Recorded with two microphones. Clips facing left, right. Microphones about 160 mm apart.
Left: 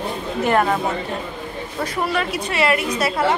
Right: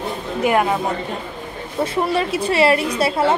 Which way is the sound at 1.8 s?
30° right (ahead or behind).